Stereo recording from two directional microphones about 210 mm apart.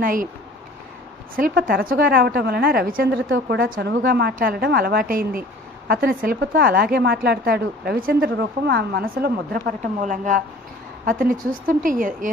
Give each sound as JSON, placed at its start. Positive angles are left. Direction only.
{"t": 0.0, "sound": "a woman's voice", "side_deg": -40}
{"t": 1.3, "sound": "a woman's voice", "side_deg": -45}